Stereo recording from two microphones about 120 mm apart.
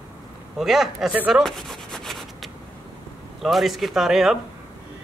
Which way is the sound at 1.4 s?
Centre (ahead or behind).